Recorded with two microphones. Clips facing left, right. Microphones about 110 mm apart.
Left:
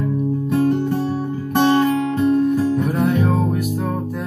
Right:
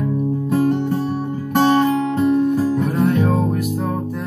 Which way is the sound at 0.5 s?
30° right (ahead or behind).